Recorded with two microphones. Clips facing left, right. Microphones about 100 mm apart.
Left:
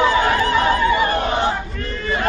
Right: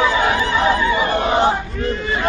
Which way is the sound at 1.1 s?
35° right (ahead or behind).